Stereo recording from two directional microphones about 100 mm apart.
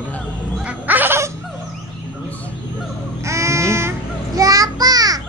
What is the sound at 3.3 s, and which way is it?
Child singing, 30° right (ahead or behind).